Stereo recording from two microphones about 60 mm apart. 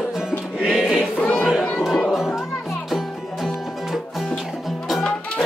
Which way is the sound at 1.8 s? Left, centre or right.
Centre.